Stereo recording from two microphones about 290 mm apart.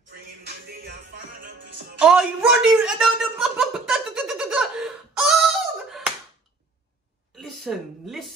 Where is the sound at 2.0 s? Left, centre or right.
Centre.